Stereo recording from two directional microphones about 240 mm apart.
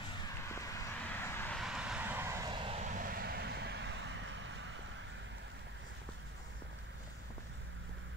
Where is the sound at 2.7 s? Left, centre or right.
Right.